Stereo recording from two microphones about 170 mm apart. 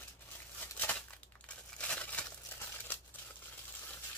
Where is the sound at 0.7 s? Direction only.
10° left (ahead or behind).